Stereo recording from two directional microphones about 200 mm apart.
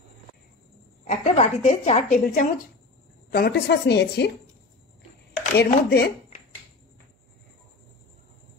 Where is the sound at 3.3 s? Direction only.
55° left (ahead or behind).